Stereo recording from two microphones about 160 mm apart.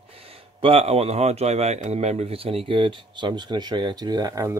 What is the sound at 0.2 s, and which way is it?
Speech, 35° right (ahead or behind).